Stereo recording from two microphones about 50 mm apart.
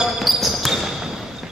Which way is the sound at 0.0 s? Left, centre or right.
Centre.